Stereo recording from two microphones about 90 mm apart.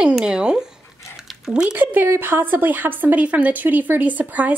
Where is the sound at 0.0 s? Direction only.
10° right (ahead or behind).